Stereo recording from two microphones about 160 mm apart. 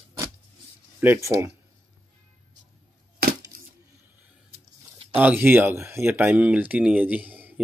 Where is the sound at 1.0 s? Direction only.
15° right (ahead or behind).